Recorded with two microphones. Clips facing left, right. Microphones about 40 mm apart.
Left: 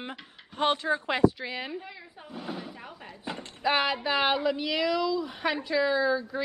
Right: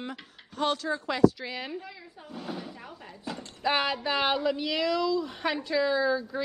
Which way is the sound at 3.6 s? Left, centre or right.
Centre.